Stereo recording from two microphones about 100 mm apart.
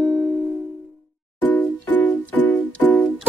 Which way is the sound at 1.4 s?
15° left (ahead or behind).